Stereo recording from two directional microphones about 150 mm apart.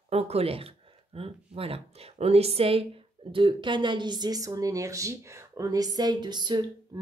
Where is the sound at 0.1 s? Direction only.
45° right (ahead or behind).